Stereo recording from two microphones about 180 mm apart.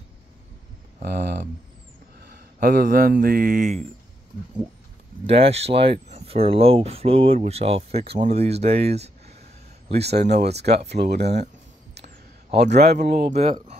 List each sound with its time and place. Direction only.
1.0 s speech: 65° right (ahead or behind); by 3.7 s 50° right (ahead or behind)
5.2 s speech: 35° right (ahead or behind)
10.1 s speech: 40° right (ahead or behind)
10.4 s speech: 65° right (ahead or behind)
12.5 s speech: 65° right (ahead or behind)
13.3 s speech: 35° right (ahead or behind)